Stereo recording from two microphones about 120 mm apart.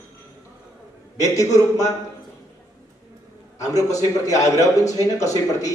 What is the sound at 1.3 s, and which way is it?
Speech, 30° left (ahead or behind).